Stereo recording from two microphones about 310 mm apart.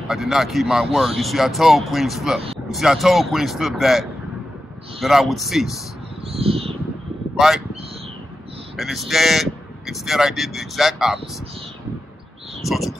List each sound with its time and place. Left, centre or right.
0.1 s speech: centre
5.0 s speech: centre
6.2 s a sound: centre
7.3 s speech: centre
8.7 s speech: centre
12.6 s speech: centre